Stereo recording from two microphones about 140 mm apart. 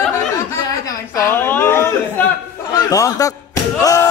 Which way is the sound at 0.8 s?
25° left (ahead or behind).